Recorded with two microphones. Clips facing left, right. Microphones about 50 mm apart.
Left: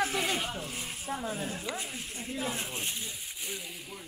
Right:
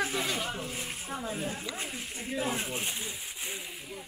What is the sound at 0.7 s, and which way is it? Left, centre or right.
Speech, centre.